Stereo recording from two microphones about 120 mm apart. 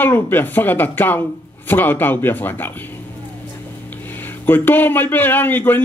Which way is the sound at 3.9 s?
15° left (ahead or behind).